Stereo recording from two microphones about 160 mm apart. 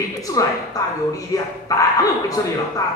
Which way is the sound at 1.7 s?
20° left (ahead or behind).